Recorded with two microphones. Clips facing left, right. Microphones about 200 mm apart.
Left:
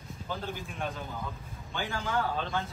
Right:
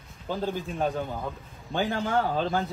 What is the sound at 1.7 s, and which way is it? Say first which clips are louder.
Speech: right 7 dB; 35° right (ahead or behind).